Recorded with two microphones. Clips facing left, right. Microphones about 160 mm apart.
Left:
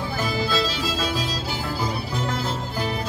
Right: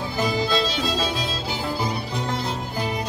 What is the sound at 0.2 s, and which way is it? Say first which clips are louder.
Music: right 3 dB; 20° right (ahead or behind).